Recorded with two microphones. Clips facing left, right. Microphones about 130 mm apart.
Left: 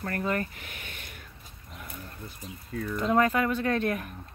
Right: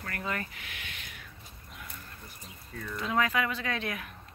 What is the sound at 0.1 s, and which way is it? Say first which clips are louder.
Speech: left 6 dB; 40° left (ahead or behind).